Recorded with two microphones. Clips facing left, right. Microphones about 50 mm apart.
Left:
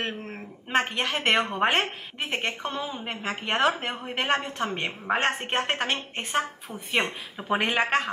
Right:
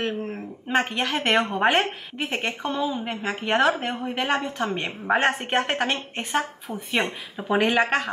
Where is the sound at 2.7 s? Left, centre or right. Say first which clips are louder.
Right 6 dB; left.